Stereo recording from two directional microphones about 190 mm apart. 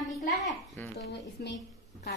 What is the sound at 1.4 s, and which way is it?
Speech, 55° left (ahead or behind).